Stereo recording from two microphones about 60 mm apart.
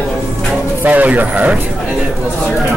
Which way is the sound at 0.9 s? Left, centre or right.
Right.